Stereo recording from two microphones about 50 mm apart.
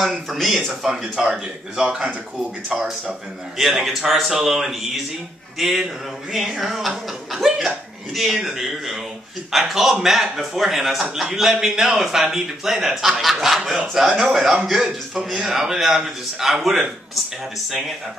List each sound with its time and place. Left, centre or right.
0.1 s a man's voice: centre
14.0 s a man's voice: centre